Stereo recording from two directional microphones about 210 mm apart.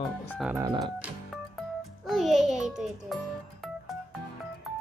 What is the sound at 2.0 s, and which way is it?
A child's voice, centre (ahead or behind).